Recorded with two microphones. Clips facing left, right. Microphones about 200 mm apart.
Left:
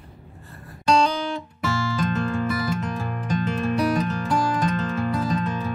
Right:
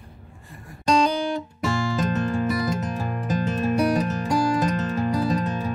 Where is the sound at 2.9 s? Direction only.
40° right (ahead or behind).